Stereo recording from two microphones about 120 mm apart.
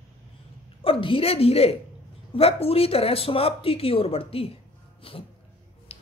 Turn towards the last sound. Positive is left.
turn(degrees=55)  # may be behind; listen again after turning